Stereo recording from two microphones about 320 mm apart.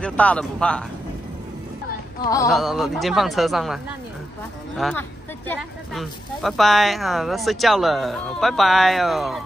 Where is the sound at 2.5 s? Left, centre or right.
Centre.